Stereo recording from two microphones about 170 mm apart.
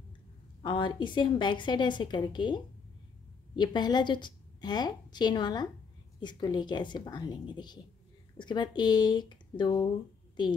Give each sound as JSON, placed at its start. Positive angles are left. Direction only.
{"t": 0.6, "sound": "a woman's voice", "side_deg": 30}